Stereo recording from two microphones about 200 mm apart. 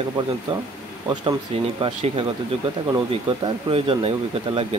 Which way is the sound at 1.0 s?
25° right (ahead or behind).